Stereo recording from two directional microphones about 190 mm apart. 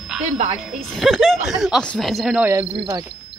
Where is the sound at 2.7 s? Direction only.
25° right (ahead or behind).